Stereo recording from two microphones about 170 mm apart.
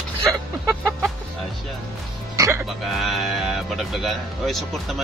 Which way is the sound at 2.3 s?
15° right (ahead or behind).